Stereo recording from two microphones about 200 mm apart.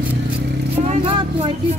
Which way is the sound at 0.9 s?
30° right (ahead or behind).